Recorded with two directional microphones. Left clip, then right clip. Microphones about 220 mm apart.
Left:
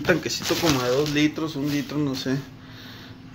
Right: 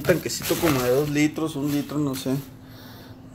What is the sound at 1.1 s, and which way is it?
Speech, 15° right (ahead or behind).